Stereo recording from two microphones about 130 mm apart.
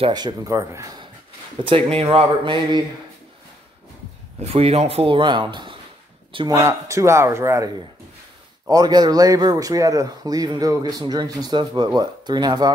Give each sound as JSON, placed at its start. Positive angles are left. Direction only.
{"t": 0.1, "sound": "speech", "side_deg": -30}
{"t": 1.6, "sound": "speech", "side_deg": -45}
{"t": 4.4, "sound": "speech", "side_deg": -50}